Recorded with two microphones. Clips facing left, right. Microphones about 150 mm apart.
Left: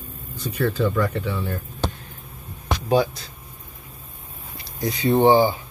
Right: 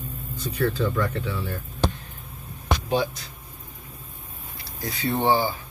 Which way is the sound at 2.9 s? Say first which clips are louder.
Left 7 dB; 40° left (ahead or behind).